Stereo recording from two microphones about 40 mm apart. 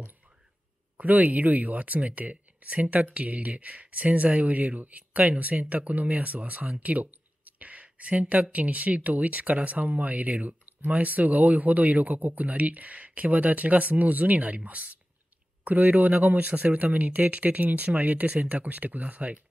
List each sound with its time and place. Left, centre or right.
0.9 s speech: right